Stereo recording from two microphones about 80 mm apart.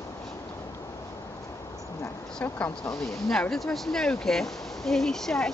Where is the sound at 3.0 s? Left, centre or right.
Centre.